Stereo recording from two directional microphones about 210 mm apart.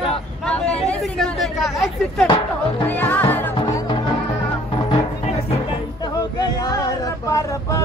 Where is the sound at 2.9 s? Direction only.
10° left (ahead or behind).